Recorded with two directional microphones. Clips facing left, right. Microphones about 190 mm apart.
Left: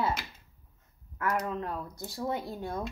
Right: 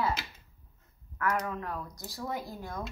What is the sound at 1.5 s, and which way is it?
Speech, 25° left (ahead or behind).